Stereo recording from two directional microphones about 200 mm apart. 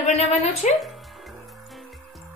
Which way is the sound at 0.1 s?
35° left (ahead or behind).